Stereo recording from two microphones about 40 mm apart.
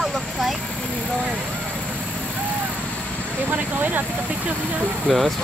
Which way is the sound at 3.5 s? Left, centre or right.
Right.